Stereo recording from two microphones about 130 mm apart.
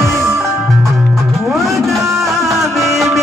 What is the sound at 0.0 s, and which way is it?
Music, 20° right (ahead or behind).